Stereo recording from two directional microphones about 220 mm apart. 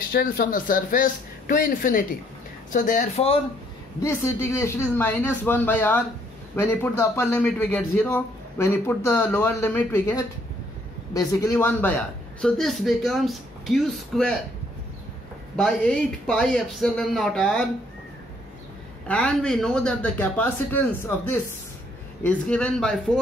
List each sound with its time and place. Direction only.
0.1 s speech: 40° left (ahead or behind)
4.0 s a man's voice: 15° left (ahead or behind)
15.5 s a man's voice: 5° left (ahead or behind)
19.0 s a man's voice: 5° left (ahead or behind)